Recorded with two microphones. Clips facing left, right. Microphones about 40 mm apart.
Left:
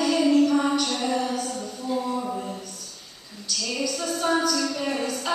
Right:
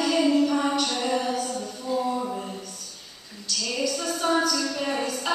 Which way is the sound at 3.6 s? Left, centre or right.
Centre.